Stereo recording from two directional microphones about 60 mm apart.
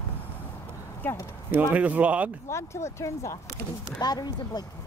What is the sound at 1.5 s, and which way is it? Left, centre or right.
Speech, right.